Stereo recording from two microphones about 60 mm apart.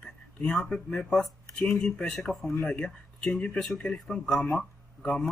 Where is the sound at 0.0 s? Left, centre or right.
Centre.